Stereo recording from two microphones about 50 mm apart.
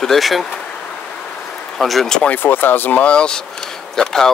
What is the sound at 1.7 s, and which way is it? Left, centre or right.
Speech, centre.